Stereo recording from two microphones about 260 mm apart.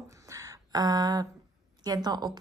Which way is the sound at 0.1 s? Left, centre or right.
Centre.